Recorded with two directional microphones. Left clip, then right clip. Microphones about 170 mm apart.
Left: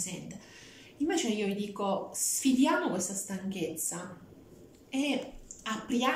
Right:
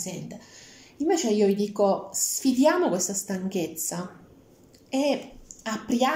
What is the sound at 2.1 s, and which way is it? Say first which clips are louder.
Speech: right 5 dB; 35° left (ahead or behind).